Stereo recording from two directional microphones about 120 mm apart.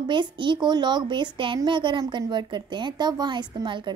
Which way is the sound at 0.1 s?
40° right (ahead or behind).